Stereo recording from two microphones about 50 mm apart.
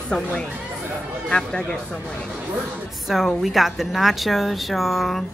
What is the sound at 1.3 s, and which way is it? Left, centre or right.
Speech, centre.